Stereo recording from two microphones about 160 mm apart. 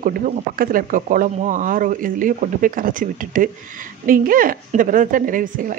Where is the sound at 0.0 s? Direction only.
55° right (ahead or behind).